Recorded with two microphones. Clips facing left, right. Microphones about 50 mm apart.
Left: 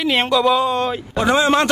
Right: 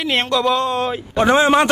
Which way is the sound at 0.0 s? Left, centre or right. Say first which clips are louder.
Left 2 dB; centre.